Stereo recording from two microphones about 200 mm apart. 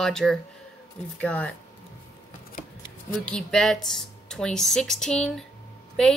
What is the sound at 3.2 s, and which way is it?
Speech, centre (ahead or behind).